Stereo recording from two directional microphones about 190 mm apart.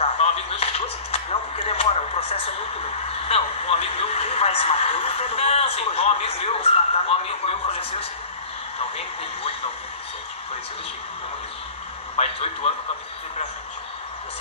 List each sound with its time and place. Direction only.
0.0 s a sound: 30° left (ahead or behind)
1.7 s a man's voice: 30° left (ahead or behind)
8.7 s speech: 30° left (ahead or behind)
12.2 s a man's voice: 30° left (ahead or behind)